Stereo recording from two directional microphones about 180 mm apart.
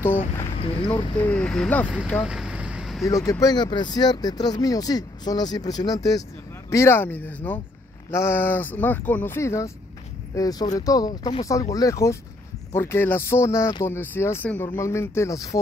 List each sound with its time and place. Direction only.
0.6 s speech: 25° left (ahead or behind)
1.2 s speech: 5° left (ahead or behind)
2.0 s vehicle: centre (ahead or behind)
3.1 s speech: 20° left (ahead or behind)